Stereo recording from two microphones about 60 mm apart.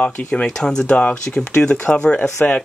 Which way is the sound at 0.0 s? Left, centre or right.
Centre.